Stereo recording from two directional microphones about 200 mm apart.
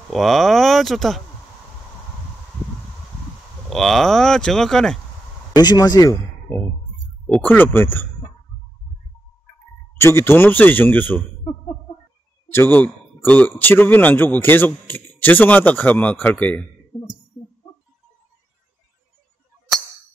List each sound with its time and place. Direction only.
0.1 s speech: centre (ahead or behind)
3.7 s speech: centre (ahead or behind)
5.6 s a man's voice: 20° left (ahead or behind)
9.9 s a man's voice: 10° left (ahead or behind)
12.4 s a man's voice: 10° left (ahead or behind)